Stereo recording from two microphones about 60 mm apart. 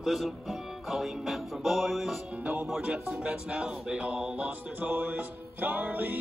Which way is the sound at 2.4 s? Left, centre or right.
Centre.